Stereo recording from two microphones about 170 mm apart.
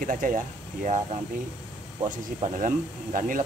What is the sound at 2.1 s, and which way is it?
Speech, 50° right (ahead or behind).